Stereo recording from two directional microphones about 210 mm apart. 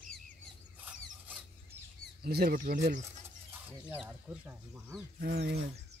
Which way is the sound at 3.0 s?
10° right (ahead or behind).